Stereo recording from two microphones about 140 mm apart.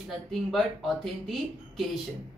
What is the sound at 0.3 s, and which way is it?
A man's voice, centre (ahead or behind).